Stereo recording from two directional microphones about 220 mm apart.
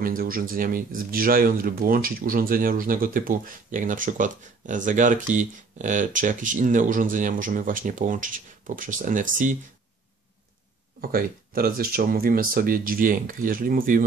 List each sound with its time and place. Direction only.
0.0 s speech: 40° right (ahead or behind)
11.0 s speech: 40° right (ahead or behind)